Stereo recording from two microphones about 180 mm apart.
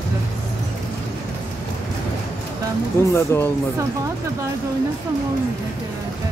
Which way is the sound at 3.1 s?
15° left (ahead or behind).